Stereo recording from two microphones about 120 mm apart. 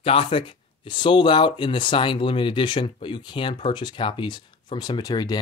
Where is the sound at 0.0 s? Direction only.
50° left (ahead or behind).